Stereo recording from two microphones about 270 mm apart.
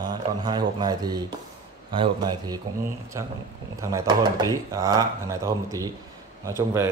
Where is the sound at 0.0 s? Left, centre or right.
Centre.